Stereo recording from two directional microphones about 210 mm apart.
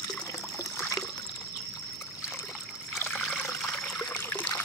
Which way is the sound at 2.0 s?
Centre (ahead or behind).